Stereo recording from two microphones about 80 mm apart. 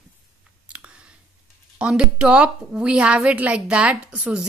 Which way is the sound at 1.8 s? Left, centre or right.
Centre.